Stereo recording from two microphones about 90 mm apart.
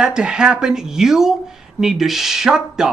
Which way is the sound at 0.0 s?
10° right (ahead or behind).